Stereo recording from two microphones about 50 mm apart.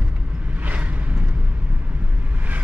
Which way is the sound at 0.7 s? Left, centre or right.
Right.